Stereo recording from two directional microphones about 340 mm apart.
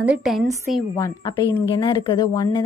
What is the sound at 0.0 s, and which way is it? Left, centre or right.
A woman's voice, centre.